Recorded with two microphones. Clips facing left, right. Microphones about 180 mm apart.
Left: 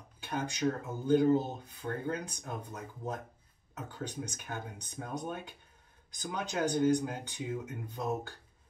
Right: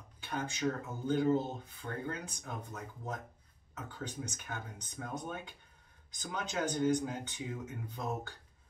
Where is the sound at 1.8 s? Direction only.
25° left (ahead or behind).